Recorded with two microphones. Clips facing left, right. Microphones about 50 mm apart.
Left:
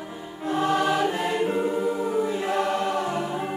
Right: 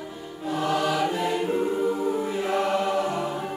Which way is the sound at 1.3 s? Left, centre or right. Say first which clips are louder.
Even; left.